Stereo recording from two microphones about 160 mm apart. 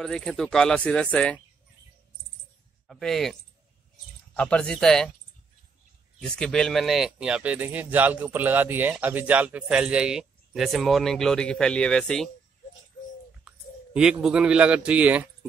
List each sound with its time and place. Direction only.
0.0 s speech: 5° left (ahead or behind)
2.9 s speech: centre (ahead or behind)
6.2 s speech: 5° left (ahead or behind)
13.4 s a man's voice: 5° right (ahead or behind)